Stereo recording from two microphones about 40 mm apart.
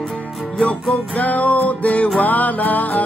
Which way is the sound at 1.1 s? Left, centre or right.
Left.